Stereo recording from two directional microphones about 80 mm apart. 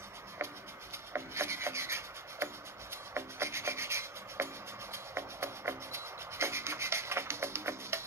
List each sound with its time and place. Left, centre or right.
1.1 s filing: right
4.9 s rub: right